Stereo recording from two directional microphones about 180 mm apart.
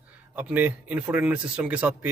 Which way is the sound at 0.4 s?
10° right (ahead or behind).